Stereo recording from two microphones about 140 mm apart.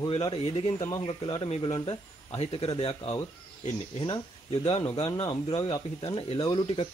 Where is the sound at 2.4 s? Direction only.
45° left (ahead or behind).